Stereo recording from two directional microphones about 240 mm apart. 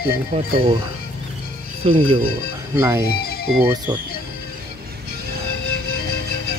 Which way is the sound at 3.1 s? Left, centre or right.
Left.